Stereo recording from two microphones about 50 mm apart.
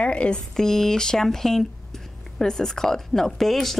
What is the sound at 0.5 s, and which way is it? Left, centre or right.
A woman's voice, centre.